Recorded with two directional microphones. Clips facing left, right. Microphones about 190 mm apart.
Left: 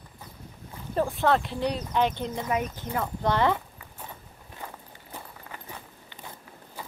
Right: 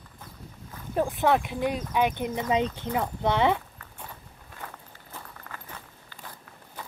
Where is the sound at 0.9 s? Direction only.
15° right (ahead or behind).